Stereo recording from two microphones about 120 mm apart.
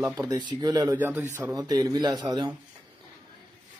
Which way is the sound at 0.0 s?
30° right (ahead or behind).